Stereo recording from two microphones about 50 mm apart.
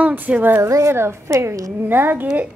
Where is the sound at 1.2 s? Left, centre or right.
Right.